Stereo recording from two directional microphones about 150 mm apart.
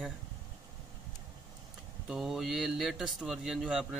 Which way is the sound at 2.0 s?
Centre (ahead or behind).